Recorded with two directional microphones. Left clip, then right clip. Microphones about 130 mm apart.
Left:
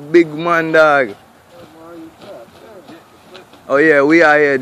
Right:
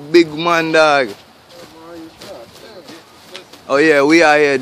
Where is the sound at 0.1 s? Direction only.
5° right (ahead or behind).